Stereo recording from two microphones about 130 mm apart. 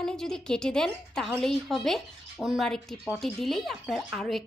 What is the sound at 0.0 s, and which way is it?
Speech, 5° left (ahead or behind).